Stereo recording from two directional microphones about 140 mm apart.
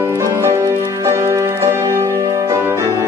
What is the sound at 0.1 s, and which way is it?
Music, 20° right (ahead or behind).